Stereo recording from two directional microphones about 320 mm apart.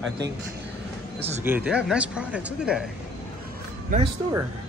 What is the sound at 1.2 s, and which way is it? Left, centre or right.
Speech, centre.